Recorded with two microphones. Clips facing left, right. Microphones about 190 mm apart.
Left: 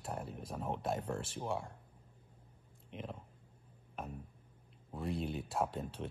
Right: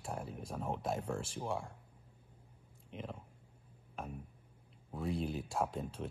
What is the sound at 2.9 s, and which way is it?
Speech, 5° right (ahead or behind).